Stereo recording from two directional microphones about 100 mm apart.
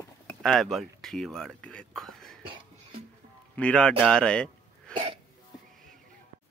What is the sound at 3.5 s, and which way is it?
Speech, 10° left (ahead or behind).